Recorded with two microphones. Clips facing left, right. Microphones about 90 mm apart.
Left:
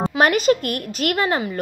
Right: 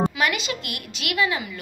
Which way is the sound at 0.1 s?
45° left (ahead or behind).